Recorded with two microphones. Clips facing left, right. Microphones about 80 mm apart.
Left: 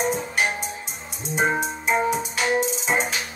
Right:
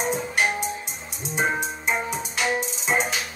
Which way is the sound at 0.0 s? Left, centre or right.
Centre.